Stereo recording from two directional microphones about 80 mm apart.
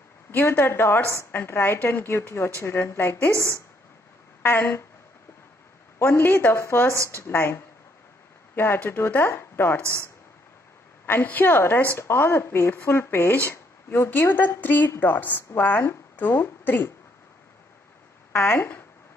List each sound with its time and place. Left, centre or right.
0.3 s a woman's voice: left
3.3 s a woman's voice: left
4.4 s speech: left
5.9 s speech: left
11.1 s speech: left
18.3 s speech: left